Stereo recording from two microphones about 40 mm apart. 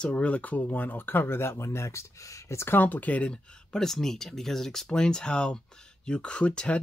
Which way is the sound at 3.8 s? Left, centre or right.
Centre.